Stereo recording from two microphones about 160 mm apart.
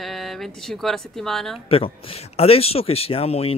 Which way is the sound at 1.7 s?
35° left (ahead or behind).